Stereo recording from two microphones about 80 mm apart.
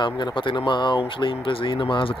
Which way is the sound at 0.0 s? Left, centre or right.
Left.